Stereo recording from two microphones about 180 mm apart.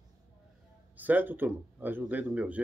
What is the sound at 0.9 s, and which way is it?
Speech, 10° right (ahead or behind).